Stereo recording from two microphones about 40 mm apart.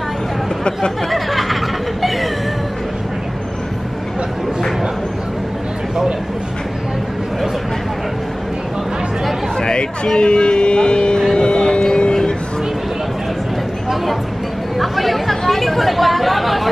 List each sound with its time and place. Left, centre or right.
1.1 s snicker: centre
9.6 s vehicle: centre
11.3 s a sound: centre
14.8 s chatter: centre